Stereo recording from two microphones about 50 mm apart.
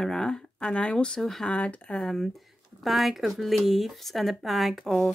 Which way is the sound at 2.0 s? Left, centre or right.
Centre.